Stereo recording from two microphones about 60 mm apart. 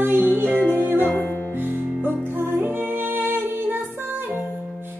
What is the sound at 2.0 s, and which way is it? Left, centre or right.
Music, right.